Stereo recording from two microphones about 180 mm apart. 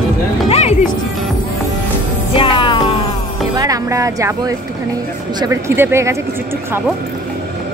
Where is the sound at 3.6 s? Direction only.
20° right (ahead or behind).